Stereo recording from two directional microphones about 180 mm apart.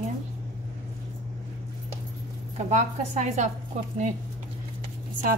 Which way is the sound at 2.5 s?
40° right (ahead or behind).